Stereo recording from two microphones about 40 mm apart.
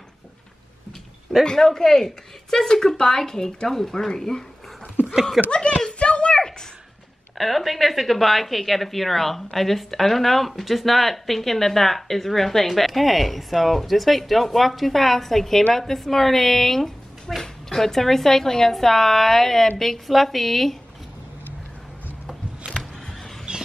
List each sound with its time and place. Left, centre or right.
1.4 s speech: centre
5.5 s speech: left
5.9 s a sound: left
7.3 s speech: centre